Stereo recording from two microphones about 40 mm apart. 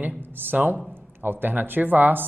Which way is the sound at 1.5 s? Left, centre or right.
Right.